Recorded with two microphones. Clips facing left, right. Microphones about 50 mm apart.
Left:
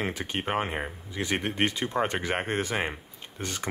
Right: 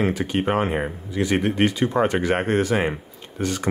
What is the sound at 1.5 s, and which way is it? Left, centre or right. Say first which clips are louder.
Speech: right 7 dB; right.